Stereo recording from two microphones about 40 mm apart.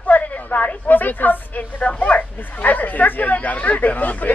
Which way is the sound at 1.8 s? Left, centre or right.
Left.